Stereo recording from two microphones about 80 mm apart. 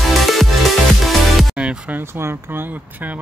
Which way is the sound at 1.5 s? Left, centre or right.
Centre.